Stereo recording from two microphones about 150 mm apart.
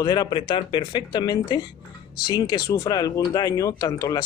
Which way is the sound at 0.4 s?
35° left (ahead or behind).